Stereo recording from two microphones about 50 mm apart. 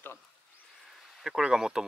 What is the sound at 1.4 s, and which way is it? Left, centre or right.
Speech, centre.